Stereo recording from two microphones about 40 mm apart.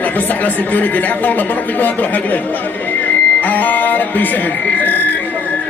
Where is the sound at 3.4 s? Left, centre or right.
Left.